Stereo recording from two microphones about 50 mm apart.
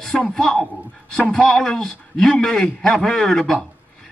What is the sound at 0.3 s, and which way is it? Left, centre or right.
A man's voice, centre.